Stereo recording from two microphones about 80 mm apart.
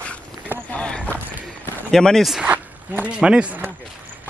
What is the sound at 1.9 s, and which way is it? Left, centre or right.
Speech, centre.